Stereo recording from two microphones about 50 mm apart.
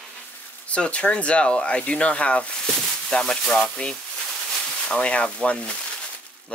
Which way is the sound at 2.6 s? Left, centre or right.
Centre.